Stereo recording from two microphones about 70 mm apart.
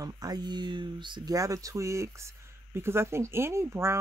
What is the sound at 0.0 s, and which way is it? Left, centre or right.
Speech, right.